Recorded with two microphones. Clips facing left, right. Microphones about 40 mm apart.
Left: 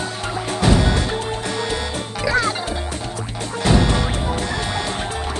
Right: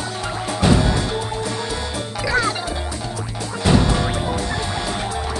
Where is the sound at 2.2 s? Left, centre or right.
Centre.